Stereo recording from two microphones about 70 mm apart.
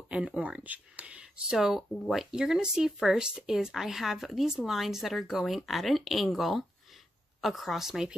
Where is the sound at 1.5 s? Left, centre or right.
Centre.